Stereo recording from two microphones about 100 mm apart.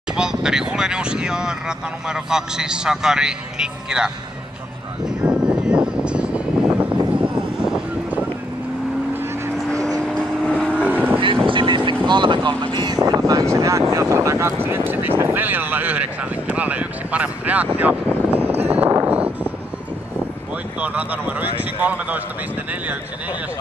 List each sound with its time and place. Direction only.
0.1 s speech: 5° right (ahead or behind)
5.0 s vehicle: 5° right (ahead or behind)
10.0 s vehicle: 10° left (ahead or behind)
10.9 s vehicle: 20° right (ahead or behind)
11.4 s boat: 55° right (ahead or behind); by 18.5 s 20° right (ahead or behind)
18.5 s a sound: 90° right
19.0 s a sound: 15° right (ahead or behind)
20.8 s speech: 15° right (ahead or behind)